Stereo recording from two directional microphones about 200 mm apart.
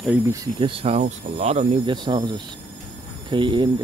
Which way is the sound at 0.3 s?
20° right (ahead or behind).